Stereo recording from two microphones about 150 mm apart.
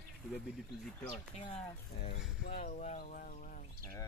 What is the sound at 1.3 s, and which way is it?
Speech, 45° left (ahead or behind).